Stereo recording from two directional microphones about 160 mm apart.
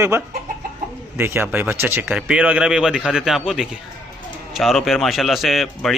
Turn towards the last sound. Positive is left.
turn(degrees=0)  # may be behind; listen again after turning